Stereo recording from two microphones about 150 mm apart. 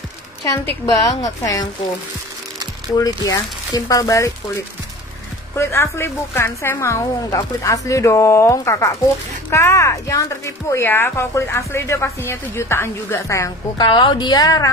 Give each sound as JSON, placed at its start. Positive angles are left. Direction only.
{"t": 0.8, "sound": "a woman's voice", "side_deg": 25}
{"t": 3.0, "sound": "a woman's voice", "side_deg": 25}
{"t": 5.6, "sound": "a woman's voice", "side_deg": 20}
{"t": 13.8, "sound": "a woman's voice", "side_deg": 30}